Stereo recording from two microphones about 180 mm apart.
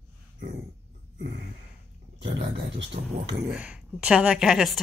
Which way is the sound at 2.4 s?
75° right (ahead or behind).